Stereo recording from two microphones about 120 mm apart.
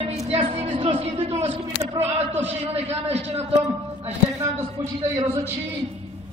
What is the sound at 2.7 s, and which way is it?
Speech, 60° right (ahead or behind).